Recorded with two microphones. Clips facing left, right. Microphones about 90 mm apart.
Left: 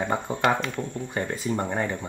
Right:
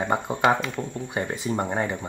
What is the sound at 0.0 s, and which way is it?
Speech, 10° right (ahead or behind).